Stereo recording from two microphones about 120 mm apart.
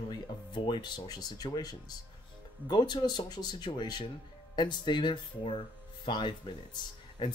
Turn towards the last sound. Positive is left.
turn(degrees=40)  # may be behind; listen again after turning